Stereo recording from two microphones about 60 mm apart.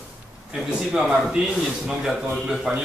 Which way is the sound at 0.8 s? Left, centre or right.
Centre.